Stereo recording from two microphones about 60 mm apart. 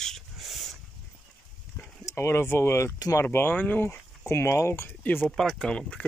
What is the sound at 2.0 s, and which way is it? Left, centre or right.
Speech, left.